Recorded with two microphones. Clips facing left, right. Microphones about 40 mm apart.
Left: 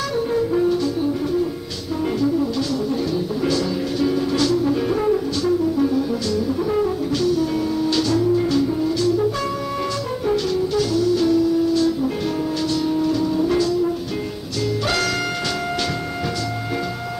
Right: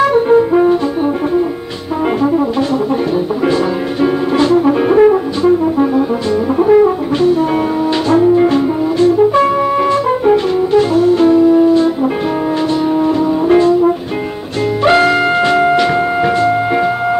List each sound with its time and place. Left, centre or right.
0.0 s brass instrument: right
3.4 s brass instrument: right
6.6 s brass instrument: right
7.2 s music: right
12.9 s music: right
14.8 s music: right